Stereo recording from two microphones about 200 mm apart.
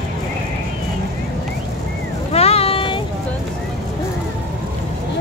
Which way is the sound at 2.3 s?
30° left (ahead or behind).